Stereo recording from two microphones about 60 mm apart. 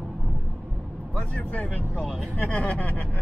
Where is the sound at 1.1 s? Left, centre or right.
Left.